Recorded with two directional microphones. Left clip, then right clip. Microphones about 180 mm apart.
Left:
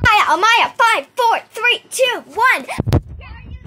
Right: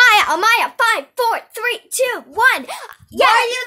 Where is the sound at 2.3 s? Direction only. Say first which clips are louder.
Right 2 dB; 15° right (ahead or behind).